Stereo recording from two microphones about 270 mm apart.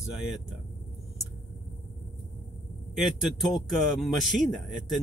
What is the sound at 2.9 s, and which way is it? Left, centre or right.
A man's voice, centre.